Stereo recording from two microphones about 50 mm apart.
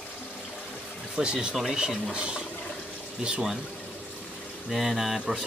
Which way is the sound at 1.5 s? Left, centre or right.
Centre.